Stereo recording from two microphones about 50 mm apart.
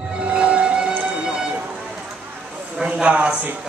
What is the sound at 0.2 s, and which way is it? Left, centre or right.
Music, centre.